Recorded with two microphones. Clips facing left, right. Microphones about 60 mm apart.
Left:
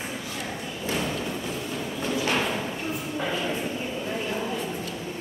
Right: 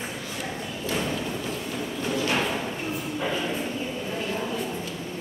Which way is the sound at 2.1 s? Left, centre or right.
Centre.